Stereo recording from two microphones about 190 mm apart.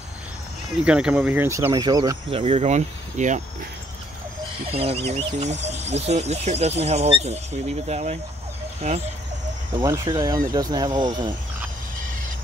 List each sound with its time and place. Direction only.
0.8 s speech: 5° right (ahead or behind); by 2.4 s 20° right (ahead or behind)
2.4 s speech: 35° right (ahead or behind)
4.6 s speech: 30° right (ahead or behind)
9.7 s speech: 25° right (ahead or behind)